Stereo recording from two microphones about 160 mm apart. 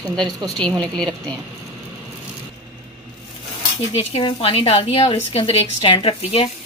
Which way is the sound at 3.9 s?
40° left (ahead or behind).